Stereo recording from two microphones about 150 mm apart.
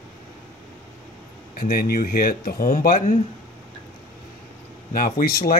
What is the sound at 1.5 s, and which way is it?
Speech, 80° left.